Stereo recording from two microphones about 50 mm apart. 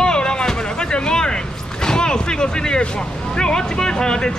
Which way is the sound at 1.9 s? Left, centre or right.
Centre.